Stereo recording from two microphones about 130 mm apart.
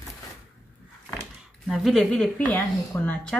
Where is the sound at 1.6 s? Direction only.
Centre (ahead or behind).